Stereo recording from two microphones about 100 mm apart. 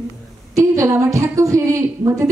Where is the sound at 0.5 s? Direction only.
30° right (ahead or behind).